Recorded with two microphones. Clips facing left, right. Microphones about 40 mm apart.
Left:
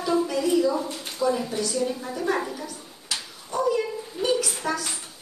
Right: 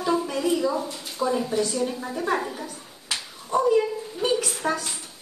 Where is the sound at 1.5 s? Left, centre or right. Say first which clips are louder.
Right 3 dB; right.